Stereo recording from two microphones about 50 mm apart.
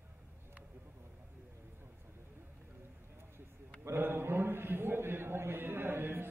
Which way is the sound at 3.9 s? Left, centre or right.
Right.